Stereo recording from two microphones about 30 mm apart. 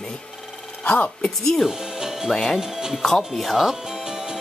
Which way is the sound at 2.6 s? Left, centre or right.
Centre.